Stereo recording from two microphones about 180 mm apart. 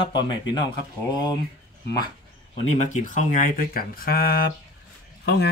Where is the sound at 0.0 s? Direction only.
25° left (ahead or behind).